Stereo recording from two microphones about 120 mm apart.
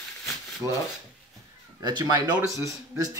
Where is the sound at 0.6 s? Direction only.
30° right (ahead or behind).